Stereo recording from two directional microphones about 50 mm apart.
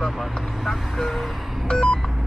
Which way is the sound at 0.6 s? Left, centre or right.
Centre.